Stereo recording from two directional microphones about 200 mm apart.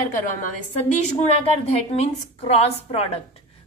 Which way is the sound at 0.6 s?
35° left (ahead or behind).